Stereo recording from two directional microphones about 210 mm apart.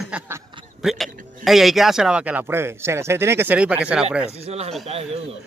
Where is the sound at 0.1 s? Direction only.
5° right (ahead or behind).